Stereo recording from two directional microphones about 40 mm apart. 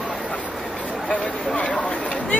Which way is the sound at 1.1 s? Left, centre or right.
Left.